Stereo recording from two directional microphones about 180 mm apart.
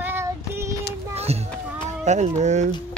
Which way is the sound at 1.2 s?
35° right (ahead or behind).